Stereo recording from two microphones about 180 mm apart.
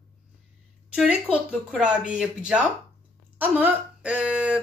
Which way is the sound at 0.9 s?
5° right (ahead or behind).